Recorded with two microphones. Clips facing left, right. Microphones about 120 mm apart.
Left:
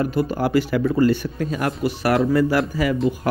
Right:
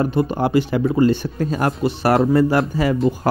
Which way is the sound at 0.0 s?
25° right (ahead or behind).